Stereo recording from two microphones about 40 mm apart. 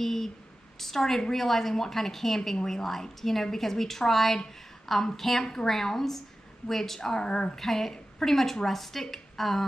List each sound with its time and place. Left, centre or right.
0.0 s a woman's voice: centre
7.5 s a woman's voice: centre